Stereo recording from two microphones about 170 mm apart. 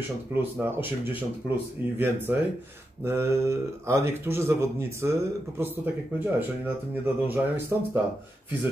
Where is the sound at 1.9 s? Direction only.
10° right (ahead or behind).